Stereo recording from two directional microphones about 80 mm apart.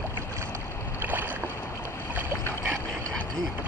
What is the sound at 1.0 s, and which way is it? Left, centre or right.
Boat, right.